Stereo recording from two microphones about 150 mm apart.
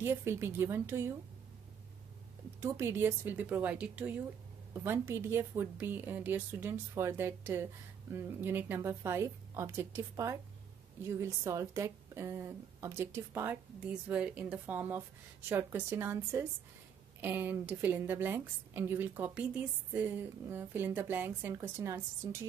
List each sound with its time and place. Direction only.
0.0 s a woman's voice: 15° right (ahead or behind)
2.6 s a woman's voice: 15° right (ahead or behind)